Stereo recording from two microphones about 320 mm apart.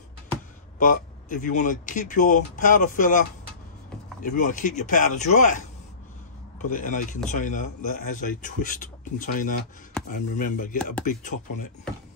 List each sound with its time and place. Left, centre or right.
0.7 s speech: left
6.6 s speech: left